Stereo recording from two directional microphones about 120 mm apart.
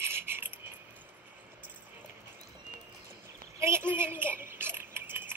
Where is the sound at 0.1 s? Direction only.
20° right (ahead or behind).